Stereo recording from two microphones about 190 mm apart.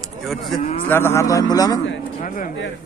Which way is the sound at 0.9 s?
15° left (ahead or behind).